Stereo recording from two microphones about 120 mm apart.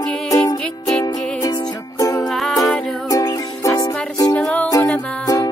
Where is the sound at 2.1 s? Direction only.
Centre (ahead or behind).